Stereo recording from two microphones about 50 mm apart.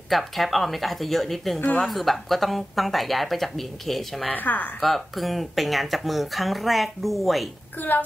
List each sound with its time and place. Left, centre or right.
0.1 s speech: centre
4.3 s speech: left
4.8 s speech: centre